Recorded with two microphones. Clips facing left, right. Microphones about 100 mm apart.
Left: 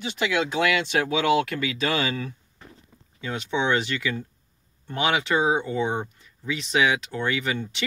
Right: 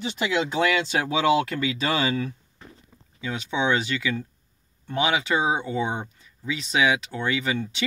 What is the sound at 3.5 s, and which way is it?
Speech, 15° right (ahead or behind).